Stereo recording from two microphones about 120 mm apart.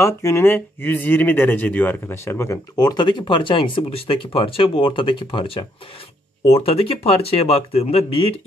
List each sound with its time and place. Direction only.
0.0 s speech: 25° left (ahead or behind); by 8.3 s 55° left (ahead or behind)